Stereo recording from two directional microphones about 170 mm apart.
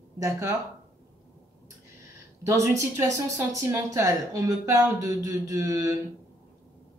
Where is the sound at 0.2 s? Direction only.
20° right (ahead or behind).